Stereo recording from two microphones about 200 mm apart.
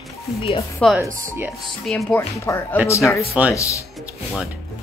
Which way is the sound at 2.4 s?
10° left (ahead or behind).